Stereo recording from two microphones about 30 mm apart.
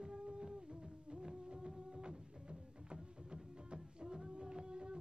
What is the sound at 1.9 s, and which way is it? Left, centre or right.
Printer, right.